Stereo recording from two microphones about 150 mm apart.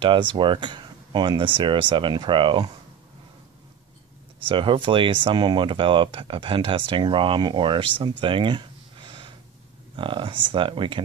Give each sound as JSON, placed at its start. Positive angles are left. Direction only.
{"t": 0.3, "sound": "speech", "side_deg": -30}
{"t": 4.5, "sound": "speech", "side_deg": -35}
{"t": 8.0, "sound": "a sound", "side_deg": -35}
{"t": 9.9, "sound": "speech", "side_deg": -35}